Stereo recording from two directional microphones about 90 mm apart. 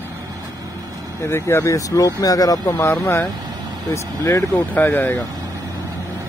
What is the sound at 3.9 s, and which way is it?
Speech, 35° left (ahead or behind).